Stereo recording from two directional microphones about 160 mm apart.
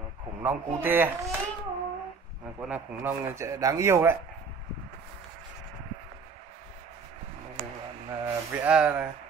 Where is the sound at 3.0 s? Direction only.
15° right (ahead or behind).